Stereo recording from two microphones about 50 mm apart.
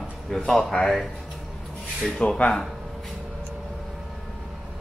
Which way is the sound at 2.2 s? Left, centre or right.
Left.